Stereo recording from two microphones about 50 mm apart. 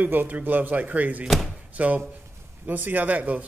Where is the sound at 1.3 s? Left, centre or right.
Centre.